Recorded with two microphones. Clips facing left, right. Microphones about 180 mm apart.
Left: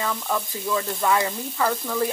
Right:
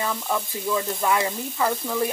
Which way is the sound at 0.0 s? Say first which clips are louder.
Even; 15° right (ahead or behind).